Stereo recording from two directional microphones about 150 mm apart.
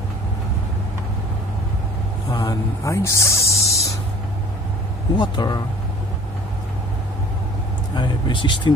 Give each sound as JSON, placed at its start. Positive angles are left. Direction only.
{"t": 2.3, "sound": "speech", "side_deg": 20}
{"t": 5.1, "sound": "speech", "side_deg": 30}
{"t": 7.9, "sound": "speech", "side_deg": 30}